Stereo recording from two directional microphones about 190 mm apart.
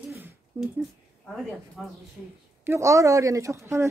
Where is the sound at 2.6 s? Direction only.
15° right (ahead or behind).